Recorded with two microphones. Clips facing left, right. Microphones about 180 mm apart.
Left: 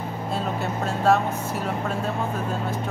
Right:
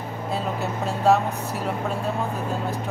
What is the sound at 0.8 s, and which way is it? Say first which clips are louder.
Speech: right 1 dB; centre (ahead or behind).